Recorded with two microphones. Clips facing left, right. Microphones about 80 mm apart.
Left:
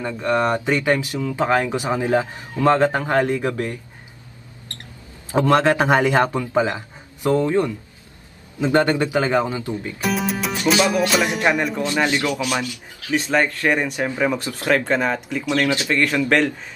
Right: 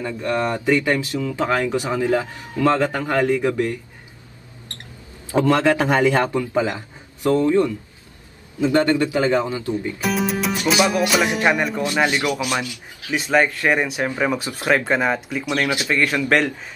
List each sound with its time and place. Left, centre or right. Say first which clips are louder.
0.0 s speech: left 2 dB; left
5.3 s speech: even; left
9.9 s music: left 2 dB; centre
11.0 s speech: even; centre
11.8 s speech: even; centre
13.1 s speech: right 1 dB; centre
16.3 s speech: even; centre